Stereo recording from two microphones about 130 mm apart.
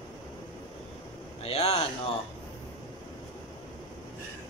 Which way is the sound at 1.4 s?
50° left (ahead or behind).